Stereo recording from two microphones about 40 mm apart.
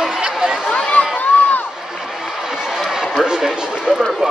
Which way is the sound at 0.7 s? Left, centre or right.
Left.